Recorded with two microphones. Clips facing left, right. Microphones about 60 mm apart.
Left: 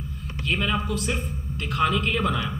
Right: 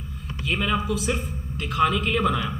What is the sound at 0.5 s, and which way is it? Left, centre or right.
A man's voice, centre.